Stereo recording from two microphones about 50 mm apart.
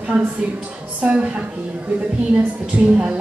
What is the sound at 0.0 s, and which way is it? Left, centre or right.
A woman's voice, right.